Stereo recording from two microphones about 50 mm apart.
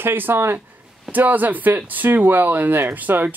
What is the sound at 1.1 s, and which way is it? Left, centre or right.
Speech, right.